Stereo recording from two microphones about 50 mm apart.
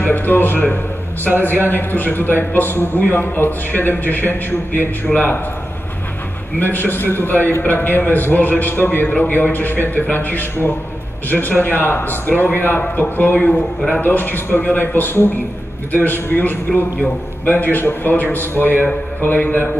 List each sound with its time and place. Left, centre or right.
0.0 s a man's voice: left
6.6 s a man's voice: left